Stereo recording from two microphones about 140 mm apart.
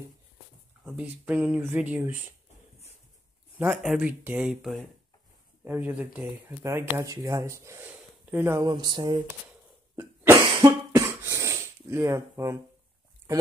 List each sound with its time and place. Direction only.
0.8 s speech: 10° right (ahead or behind)
3.7 s speech: 5° right (ahead or behind); by 7.9 s 20° right (ahead or behind)
7.9 s a sound: 15° right (ahead or behind)
8.6 s speech: 30° right (ahead or behind)
9.9 s cough: 15° right (ahead or behind)